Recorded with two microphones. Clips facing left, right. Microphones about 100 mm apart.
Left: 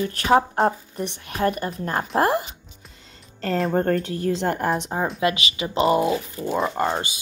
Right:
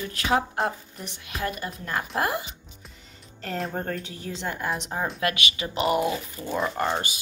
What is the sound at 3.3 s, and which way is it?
Speech, 90° left.